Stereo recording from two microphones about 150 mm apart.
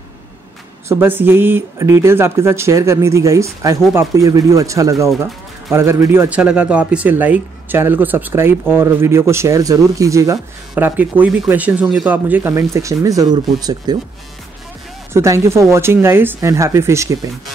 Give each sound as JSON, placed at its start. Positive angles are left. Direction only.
{"t": 0.8, "sound": "speech", "side_deg": -15}
{"t": 10.7, "sound": "speech", "side_deg": -10}
{"t": 15.1, "sound": "a woman's voice", "side_deg": -20}